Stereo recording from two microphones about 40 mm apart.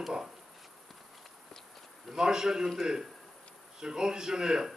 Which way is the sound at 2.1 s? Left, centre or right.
Centre.